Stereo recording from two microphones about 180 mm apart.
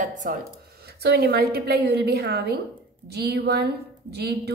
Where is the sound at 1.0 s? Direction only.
65° right (ahead or behind).